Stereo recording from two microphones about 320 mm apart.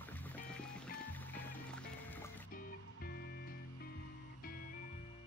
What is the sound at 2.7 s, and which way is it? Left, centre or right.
Music, left.